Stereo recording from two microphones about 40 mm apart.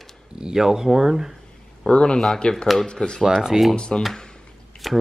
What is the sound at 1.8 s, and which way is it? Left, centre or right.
Speech, left.